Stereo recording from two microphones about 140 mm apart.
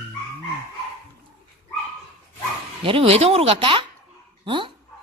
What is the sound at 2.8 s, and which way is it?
Speech, 45° right (ahead or behind).